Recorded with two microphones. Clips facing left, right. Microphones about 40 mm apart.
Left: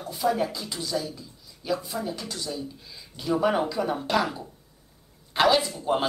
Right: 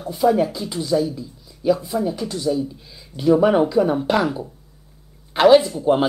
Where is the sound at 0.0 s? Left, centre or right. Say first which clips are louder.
Right 8 dB; centre.